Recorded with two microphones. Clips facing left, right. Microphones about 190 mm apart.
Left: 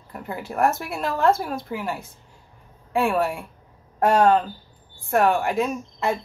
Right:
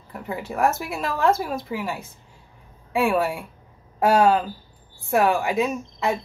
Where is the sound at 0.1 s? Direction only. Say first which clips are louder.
Right 1 dB; centre (ahead or behind).